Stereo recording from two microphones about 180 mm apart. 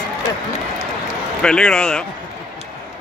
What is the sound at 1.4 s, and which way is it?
Speech, 5° left (ahead or behind).